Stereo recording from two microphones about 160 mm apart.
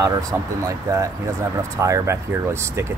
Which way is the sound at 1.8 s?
20° right (ahead or behind).